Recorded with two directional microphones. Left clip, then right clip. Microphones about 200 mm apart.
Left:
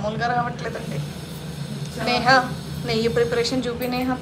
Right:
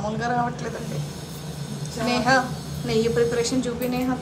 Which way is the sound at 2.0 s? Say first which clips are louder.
Left 3 dB; 15° right (ahead or behind).